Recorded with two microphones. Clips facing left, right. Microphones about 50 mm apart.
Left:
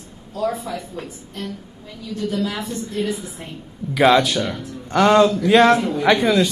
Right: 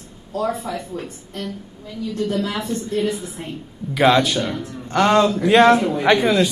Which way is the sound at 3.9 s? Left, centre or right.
Centre.